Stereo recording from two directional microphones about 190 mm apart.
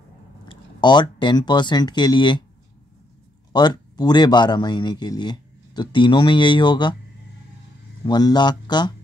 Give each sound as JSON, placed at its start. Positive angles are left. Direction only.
{"t": 0.5, "sound": "speech", "side_deg": 25}
{"t": 3.5, "sound": "speech", "side_deg": 20}
{"t": 8.0, "sound": "speech", "side_deg": 20}